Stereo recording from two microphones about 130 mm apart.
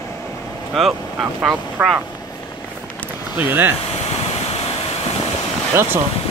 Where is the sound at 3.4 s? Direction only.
15° right (ahead or behind).